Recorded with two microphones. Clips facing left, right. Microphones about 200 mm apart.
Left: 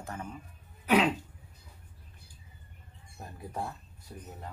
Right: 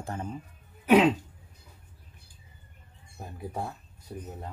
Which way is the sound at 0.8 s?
25° right (ahead or behind).